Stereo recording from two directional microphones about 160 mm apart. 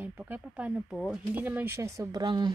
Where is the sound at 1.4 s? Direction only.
15° right (ahead or behind).